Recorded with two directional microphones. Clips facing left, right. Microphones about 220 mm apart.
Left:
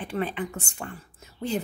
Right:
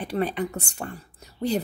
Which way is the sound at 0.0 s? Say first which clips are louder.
Right 3 dB; 40° right (ahead or behind).